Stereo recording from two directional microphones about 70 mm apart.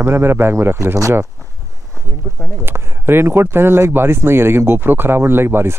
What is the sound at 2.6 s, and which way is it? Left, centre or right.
Speech, right.